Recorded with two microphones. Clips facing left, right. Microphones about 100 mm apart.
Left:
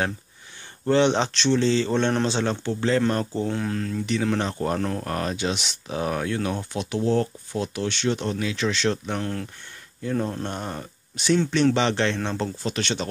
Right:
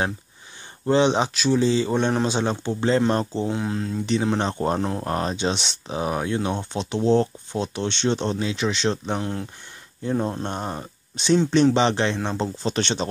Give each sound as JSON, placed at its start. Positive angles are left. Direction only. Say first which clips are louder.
{"t": 0.8, "sound": "speech", "louder": "right 1 dB", "side_deg": -15}
{"t": 12.6, "sound": "speech", "louder": "right 5 dB", "side_deg": -25}